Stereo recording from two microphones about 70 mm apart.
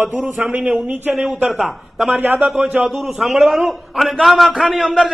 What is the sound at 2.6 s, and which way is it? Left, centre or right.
A man's voice, centre.